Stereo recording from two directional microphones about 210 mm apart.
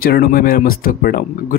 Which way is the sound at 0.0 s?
45° left (ahead or behind).